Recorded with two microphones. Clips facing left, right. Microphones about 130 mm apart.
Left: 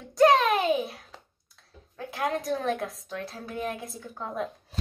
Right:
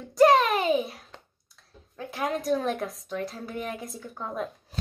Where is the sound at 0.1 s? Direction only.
Centre (ahead or behind).